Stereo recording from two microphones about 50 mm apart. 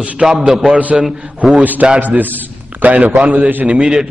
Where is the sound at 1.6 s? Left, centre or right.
Right.